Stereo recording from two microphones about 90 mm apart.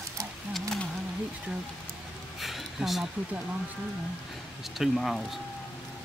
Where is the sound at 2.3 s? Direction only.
Centre (ahead or behind).